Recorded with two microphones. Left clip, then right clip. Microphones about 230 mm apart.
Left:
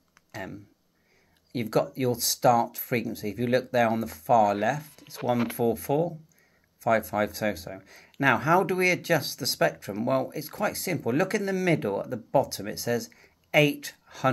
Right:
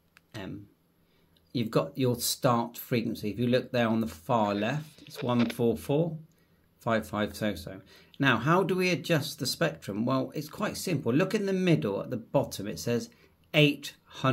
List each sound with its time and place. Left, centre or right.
1.6 s speech: centre
4.9 s a sound: right
5.6 s speech: centre